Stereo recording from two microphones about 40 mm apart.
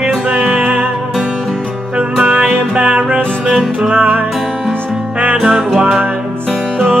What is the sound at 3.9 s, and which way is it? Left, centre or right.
Music, right.